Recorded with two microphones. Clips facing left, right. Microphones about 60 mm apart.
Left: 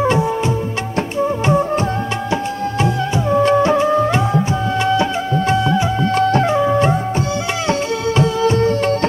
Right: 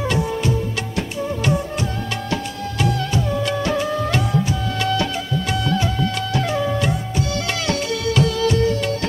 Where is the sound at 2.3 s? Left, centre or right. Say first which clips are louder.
Left 6 dB; left.